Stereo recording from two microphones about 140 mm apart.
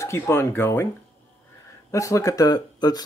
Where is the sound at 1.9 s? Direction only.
20° left (ahead or behind).